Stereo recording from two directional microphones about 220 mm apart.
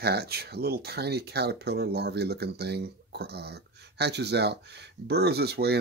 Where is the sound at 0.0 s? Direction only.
45° right (ahead or behind).